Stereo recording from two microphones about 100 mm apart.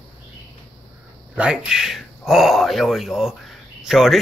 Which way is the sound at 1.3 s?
10° right (ahead or behind).